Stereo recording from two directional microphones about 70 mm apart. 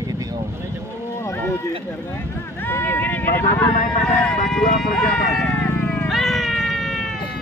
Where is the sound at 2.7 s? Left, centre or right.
Left.